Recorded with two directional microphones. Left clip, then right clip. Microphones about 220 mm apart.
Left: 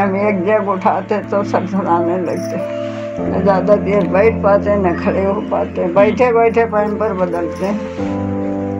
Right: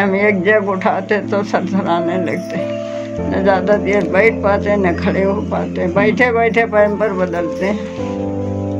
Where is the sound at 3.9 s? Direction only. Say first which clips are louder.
Even; 40° right (ahead or behind).